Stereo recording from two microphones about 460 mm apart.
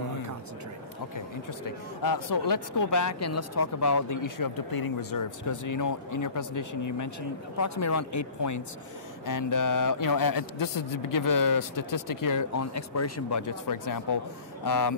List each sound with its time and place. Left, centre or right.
1.1 s a man's voice: left